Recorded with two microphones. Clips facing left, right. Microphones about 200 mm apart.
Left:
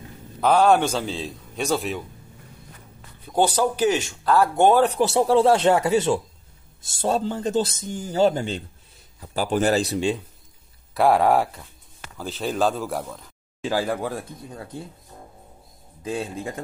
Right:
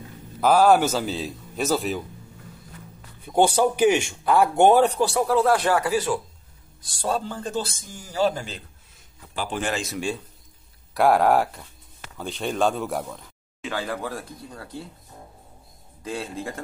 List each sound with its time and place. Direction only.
0.4 s a man's voice: 5° right (ahead or behind)
3.3 s speech: 10° right (ahead or behind)
5.0 s speech: 25° left (ahead or behind)
9.2 s a man's voice: 40° left (ahead or behind); by 10.2 s 25° left (ahead or behind)
11.0 s a man's voice: centre (ahead or behind)
13.6 s speech: 30° left (ahead or behind)
16.0 s speech: 20° left (ahead or behind)